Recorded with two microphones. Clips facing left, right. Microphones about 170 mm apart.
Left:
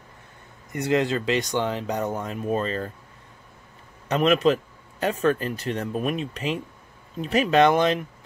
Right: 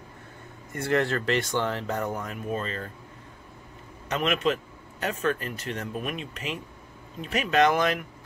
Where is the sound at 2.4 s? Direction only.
35° left (ahead or behind).